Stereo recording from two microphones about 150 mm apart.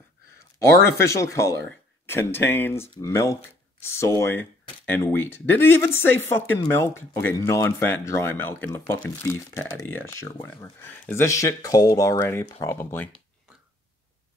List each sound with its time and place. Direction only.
0.6 s speech: 20° left (ahead or behind)